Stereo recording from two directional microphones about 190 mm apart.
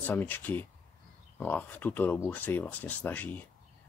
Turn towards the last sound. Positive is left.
turn(degrees=10)  # may be behind; listen again after turning